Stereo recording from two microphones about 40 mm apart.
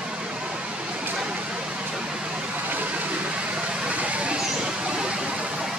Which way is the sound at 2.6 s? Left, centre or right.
Right.